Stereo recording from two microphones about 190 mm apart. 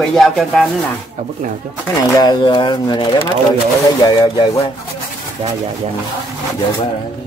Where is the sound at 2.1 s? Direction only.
20° left (ahead or behind).